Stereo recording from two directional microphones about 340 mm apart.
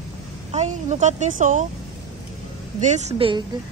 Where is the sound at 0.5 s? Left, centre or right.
Centre.